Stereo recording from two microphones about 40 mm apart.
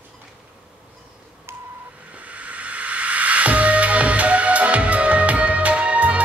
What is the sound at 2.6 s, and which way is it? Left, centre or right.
Music, right.